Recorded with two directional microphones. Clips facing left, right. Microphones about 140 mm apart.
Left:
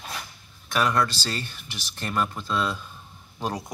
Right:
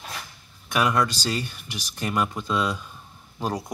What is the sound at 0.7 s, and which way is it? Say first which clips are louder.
Speech: right 1 dB; 10° right (ahead or behind).